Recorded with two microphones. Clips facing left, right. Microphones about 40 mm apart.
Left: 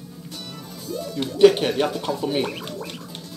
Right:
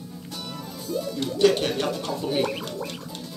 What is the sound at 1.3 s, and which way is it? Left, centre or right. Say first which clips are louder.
Speech: left 5 dB; left.